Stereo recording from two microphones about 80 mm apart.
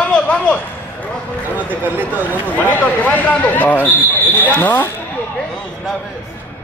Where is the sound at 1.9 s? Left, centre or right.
Right.